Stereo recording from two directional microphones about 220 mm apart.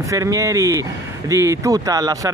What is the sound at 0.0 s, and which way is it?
Speech, 15° right (ahead or behind).